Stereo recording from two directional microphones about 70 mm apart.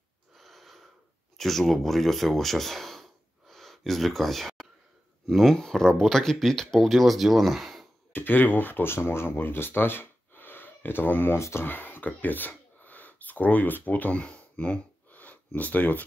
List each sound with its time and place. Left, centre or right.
0.4 s wheeze: centre
1.4 s speech: centre
8.1 s speech: left